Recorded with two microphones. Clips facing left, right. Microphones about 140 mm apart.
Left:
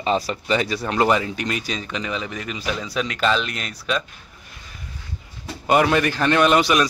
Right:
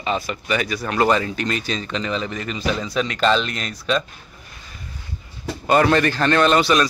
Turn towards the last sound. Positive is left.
turn(degrees=15)  # may be behind; listen again after turning